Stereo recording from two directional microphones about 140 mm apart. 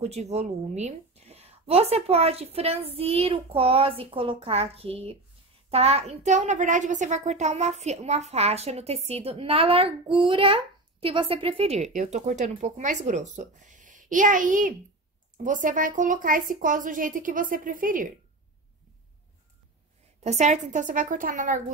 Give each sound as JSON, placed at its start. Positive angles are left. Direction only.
{"t": 0.0, "sound": "a woman's voice", "side_deg": -50}
{"t": 20.2, "sound": "a woman's voice", "side_deg": -55}